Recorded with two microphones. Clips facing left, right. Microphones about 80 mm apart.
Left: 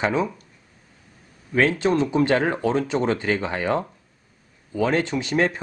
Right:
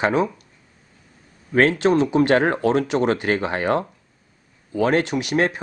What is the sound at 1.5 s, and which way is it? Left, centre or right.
Speech, right.